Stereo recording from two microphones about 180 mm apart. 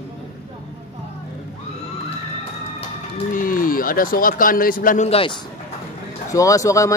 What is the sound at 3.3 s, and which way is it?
A man's voice, 50° left (ahead or behind).